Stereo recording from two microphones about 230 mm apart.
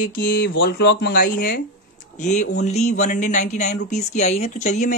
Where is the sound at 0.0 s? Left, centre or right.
Left.